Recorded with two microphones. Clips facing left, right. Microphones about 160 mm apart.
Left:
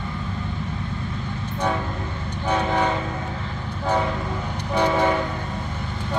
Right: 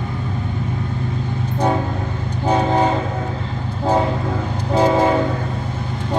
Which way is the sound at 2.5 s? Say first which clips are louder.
Right 5 dB; 35° right (ahead or behind).